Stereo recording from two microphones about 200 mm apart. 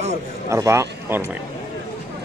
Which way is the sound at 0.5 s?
15° right (ahead or behind).